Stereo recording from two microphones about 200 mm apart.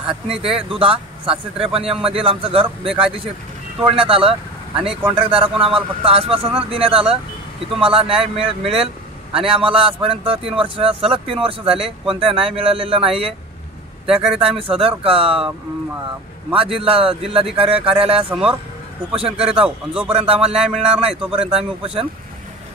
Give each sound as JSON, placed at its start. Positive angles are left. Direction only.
{"t": 0.0, "sound": "speech", "side_deg": -30}
{"t": 16.8, "sound": "speech", "side_deg": -30}
{"t": 18.3, "sound": "speech", "side_deg": -5}
{"t": 19.1, "sound": "speech", "side_deg": -30}
{"t": 19.6, "sound": "speech", "side_deg": -5}
{"t": 20.1, "sound": "speech", "side_deg": -25}
{"t": 20.6, "sound": "speech", "side_deg": -5}
{"t": 21.5, "sound": "speech", "side_deg": -25}